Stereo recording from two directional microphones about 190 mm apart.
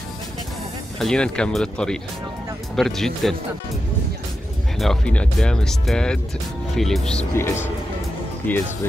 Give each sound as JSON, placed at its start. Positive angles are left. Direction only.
{"t": 0.9, "sound": "speech", "side_deg": 5}
{"t": 4.7, "sound": "speech", "side_deg": 5}